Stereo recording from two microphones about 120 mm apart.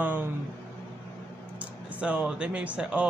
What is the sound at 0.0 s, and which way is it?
Speech, 15° right (ahead or behind).